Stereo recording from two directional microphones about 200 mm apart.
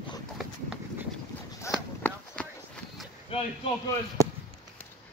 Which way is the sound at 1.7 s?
15° left (ahead or behind).